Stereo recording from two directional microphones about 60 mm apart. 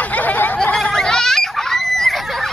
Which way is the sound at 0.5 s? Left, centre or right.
Centre.